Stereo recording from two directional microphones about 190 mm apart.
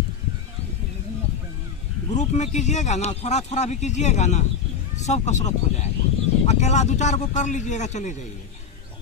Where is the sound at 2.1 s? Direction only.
40° left (ahead or behind).